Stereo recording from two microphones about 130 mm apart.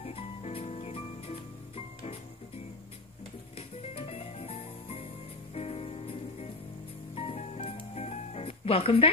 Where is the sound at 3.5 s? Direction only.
45° left (ahead or behind).